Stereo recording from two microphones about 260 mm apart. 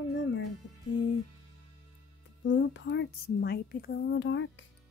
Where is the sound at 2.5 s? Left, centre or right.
Left.